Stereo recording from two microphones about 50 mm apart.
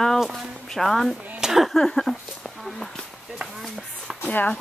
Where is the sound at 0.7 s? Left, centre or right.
Centre.